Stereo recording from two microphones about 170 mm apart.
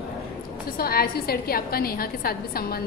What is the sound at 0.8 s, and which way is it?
A woman's voice, 60° left (ahead or behind).